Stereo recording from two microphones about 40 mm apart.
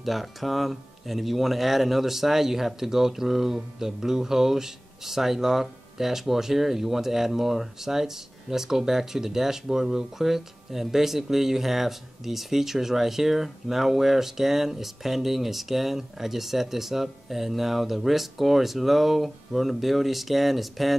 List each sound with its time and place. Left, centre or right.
0.0 s speech: centre